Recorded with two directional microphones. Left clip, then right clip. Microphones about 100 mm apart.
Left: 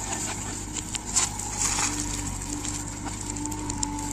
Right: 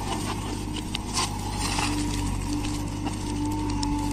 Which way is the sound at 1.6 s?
20° left (ahead or behind).